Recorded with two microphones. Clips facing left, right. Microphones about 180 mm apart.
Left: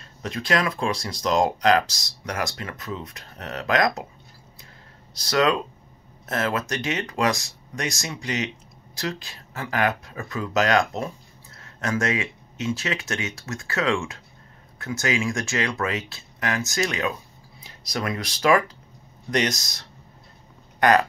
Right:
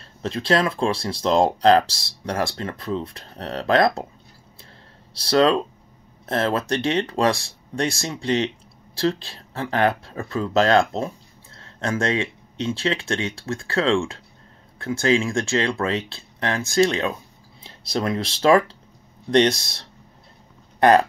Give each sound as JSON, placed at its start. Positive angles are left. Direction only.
{"t": 0.0, "sound": "speech", "side_deg": -30}
{"t": 5.1, "sound": "speech", "side_deg": -30}